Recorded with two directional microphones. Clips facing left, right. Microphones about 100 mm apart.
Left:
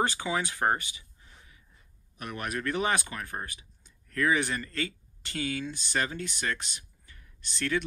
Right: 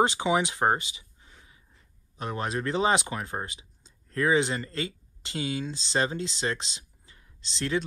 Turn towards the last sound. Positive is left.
turn(degrees=-25)  # may be behind; listen again after turning